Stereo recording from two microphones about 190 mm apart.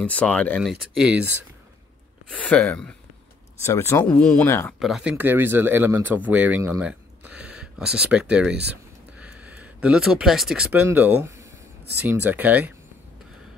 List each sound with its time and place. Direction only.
0.0 s speech: 5° left (ahead or behind)
2.3 s speech: 5° left (ahead or behind)
4.7 s speech: centre (ahead or behind)